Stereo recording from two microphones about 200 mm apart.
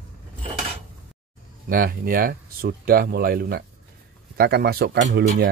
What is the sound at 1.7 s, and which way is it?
Speech, 50° right (ahead or behind).